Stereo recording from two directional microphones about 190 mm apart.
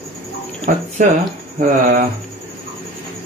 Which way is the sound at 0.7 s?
45° right (ahead or behind).